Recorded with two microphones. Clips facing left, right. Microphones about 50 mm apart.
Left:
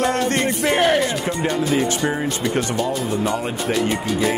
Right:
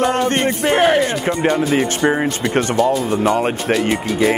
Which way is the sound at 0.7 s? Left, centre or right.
Centre.